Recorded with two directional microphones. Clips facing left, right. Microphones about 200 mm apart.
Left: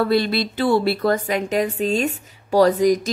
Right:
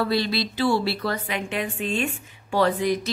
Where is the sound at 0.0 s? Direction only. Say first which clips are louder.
Left 5 dB; 55° left (ahead or behind).